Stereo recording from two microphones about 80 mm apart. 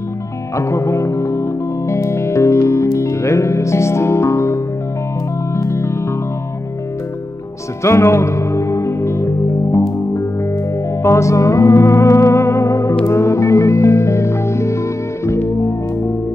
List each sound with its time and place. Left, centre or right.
0.6 s music: left
7.8 s music: left